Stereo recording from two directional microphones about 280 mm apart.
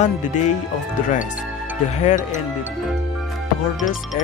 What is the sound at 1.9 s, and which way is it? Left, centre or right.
Speech, left.